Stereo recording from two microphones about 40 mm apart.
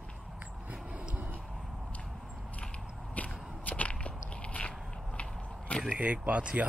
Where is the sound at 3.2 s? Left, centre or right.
Left.